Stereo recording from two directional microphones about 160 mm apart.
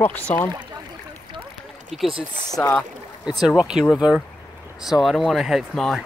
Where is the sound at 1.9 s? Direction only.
Centre (ahead or behind).